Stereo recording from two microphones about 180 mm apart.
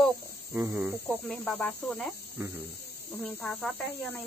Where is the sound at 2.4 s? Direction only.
10° right (ahead or behind).